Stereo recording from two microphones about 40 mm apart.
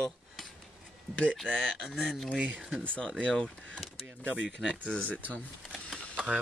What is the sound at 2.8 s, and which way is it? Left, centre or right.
Speech, left.